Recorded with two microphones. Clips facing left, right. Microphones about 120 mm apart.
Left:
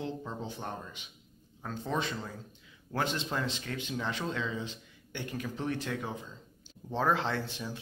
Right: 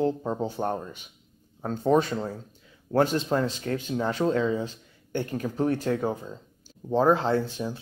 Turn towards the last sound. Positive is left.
turn(degrees=-30)  # may be behind; listen again after turning